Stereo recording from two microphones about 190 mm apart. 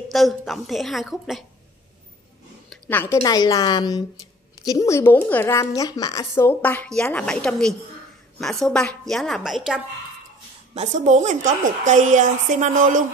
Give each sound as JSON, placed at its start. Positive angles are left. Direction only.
{"t": 0.1, "sound": "a woman's voice", "side_deg": 0}
{"t": 2.7, "sound": "a woman's voice", "side_deg": 10}
{"t": 10.7, "sound": "a woman's voice", "side_deg": -35}